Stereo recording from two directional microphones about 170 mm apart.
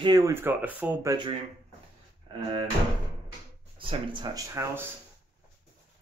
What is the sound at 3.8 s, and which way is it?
Speech, 30° right (ahead or behind).